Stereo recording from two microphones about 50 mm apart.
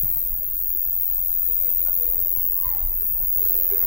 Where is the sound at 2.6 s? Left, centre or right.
Left.